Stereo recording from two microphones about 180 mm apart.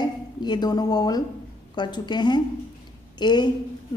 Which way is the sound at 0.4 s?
25° left (ahead or behind).